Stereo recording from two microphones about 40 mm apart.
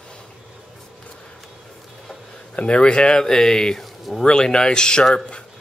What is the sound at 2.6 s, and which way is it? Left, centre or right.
Speech, left.